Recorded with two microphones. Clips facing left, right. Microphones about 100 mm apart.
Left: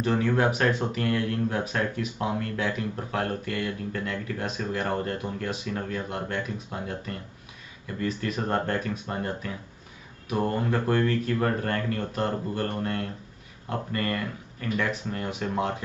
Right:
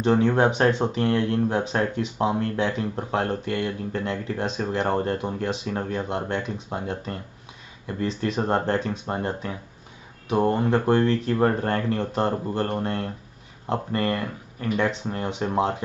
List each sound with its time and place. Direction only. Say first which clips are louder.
0.0 s speech: right 4 dB; 30° right (ahead or behind)